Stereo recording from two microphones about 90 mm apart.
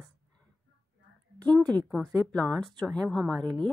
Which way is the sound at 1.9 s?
5° left (ahead or behind).